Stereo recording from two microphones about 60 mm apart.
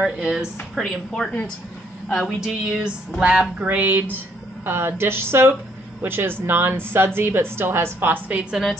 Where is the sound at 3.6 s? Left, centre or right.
Right.